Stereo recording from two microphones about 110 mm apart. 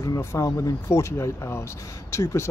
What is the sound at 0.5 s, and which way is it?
Speech, 30° left (ahead or behind).